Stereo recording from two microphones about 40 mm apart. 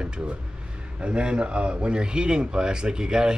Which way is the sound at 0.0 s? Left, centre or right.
Right.